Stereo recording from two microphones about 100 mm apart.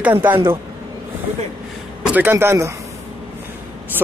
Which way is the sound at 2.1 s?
20° right (ahead or behind).